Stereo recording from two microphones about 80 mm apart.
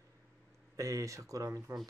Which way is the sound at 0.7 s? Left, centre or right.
Right.